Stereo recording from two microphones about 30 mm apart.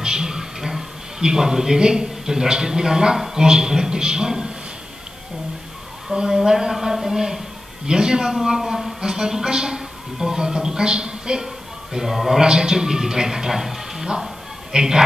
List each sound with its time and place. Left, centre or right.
0.0 s a sound: right
1.2 s a woman's voice: centre
6.3 s a man's voice: centre
8.5 s a man's voice: centre
9.0 s a woman's voice: right
11.4 s a man's voice: centre
12.4 s a man's voice: right
14.7 s a woman's voice: right